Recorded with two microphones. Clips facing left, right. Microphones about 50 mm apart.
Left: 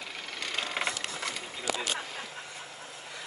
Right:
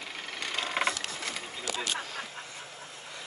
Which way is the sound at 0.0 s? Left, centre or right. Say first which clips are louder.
Right 1 dB; centre.